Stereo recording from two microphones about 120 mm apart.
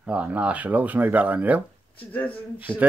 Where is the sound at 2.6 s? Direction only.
15° right (ahead or behind).